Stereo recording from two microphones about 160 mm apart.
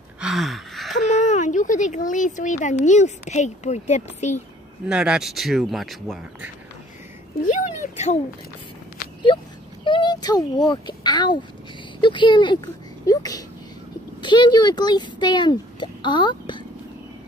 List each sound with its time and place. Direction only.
0.2 s gasp: centre (ahead or behind)
1.2 s speech: 50° left (ahead or behind)
4.8 s speech: 5° right (ahead or behind)
7.4 s speech: 55° left (ahead or behind)
9.3 s a sound: 30° left (ahead or behind)
9.8 s a child's voice: 30° left (ahead or behind)